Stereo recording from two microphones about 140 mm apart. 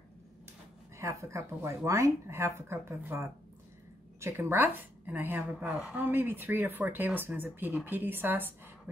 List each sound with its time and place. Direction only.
0.9 s a woman's voice: 20° right (ahead or behind)